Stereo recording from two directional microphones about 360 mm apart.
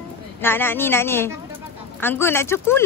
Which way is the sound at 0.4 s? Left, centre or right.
Centre.